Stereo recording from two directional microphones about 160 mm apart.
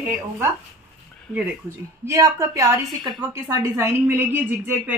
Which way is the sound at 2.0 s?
20° right (ahead or behind).